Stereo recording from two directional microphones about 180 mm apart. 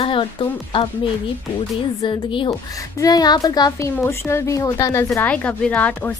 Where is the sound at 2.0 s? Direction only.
30° left (ahead or behind).